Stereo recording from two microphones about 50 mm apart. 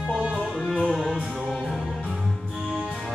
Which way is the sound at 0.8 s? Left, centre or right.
Centre.